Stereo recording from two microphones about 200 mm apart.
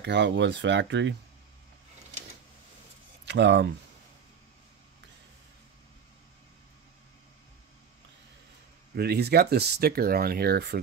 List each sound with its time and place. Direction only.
0.0 s speech: 60° right (ahead or behind)
3.3 s speech: 60° right (ahead or behind)
8.9 s speech: 55° right (ahead or behind)